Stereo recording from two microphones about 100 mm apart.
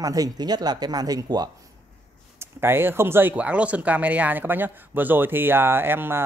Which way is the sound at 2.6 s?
25° right (ahead or behind).